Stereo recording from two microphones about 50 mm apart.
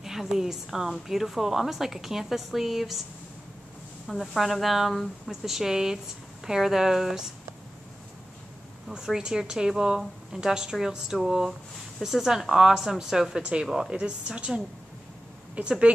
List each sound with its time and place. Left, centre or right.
0.0 s a woman's voice: centre
4.1 s a woman's voice: centre
8.8 s a woman's voice: centre